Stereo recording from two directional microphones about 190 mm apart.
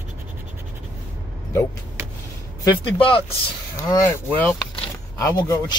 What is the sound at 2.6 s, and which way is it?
Speech, 25° left (ahead or behind).